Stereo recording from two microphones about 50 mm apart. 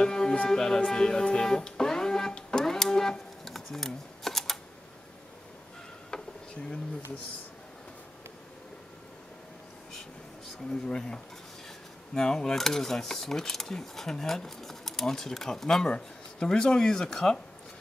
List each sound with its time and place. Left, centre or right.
0.0 s music: centre
6.0 s a sound: centre
10.7 s speech: centre